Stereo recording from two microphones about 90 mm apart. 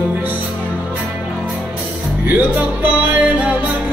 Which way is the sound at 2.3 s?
20° right (ahead or behind).